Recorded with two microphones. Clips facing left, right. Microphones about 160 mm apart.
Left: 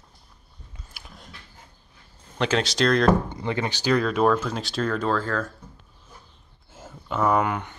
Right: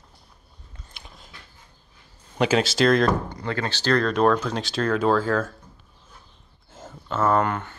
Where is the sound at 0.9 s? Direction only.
Centre (ahead or behind).